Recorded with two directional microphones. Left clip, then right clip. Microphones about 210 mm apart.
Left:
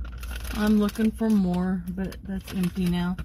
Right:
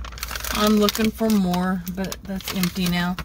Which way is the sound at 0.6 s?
50° right (ahead or behind).